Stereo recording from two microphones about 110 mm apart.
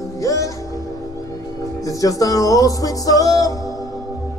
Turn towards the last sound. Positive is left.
turn(degrees=30)  # may be behind; listen again after turning